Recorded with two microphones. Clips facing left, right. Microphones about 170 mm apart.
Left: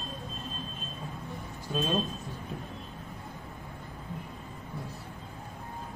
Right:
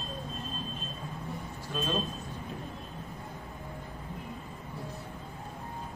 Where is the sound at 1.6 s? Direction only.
20° left (ahead or behind).